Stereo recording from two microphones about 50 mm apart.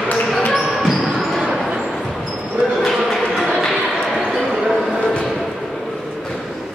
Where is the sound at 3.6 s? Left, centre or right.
Centre.